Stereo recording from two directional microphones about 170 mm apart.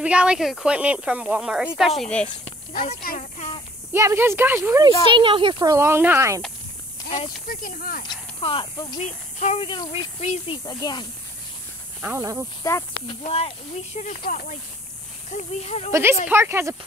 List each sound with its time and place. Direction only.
0.0 s speech: 5° right (ahead or behind)
3.2 s a sound: 40° left (ahead or behind)
3.9 s speech: 15° right (ahead or behind)
5.0 s speech: 30° right (ahead or behind)
7.4 s speech: 55° left (ahead or behind)
8.0 s speech: 30° left (ahead or behind)
9.0 s speech: 45° left (ahead or behind)
9.6 s speech: 30° left (ahead or behind)
10.2 s speech: 40° left (ahead or behind)
10.6 s speech: 25° left (ahead or behind)
12.0 s speech: 15° right (ahead or behind)
13.2 s speech: 35° left (ahead or behind)
14.2 s speech: 50° left (ahead or behind)
15.9 s speech: 15° right (ahead or behind)